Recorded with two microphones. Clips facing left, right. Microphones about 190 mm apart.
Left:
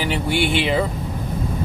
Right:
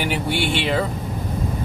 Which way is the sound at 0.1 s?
Centre (ahead or behind).